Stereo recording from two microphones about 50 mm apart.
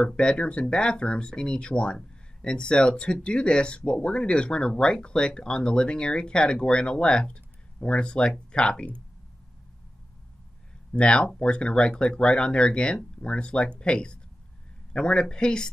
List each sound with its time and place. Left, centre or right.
0.0 s speech: centre
10.9 s speech: left